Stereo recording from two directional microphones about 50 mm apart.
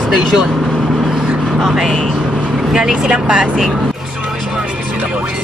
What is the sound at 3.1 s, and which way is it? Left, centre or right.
Speech, right.